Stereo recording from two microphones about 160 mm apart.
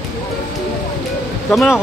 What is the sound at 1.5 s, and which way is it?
Speech, centre (ahead or behind).